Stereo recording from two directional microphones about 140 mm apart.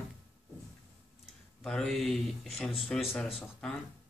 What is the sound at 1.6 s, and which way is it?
Speech, 5° left (ahead or behind).